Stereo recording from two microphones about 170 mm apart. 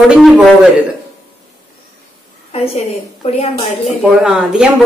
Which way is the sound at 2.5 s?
35° left (ahead or behind).